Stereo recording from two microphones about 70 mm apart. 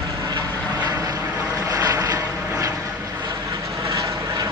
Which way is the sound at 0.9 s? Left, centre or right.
Right.